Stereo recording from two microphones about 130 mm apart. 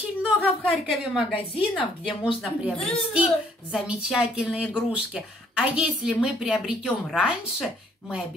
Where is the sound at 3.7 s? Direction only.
5° right (ahead or behind).